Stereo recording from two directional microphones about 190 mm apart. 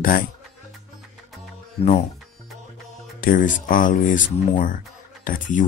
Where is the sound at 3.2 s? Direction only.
45° left (ahead or behind).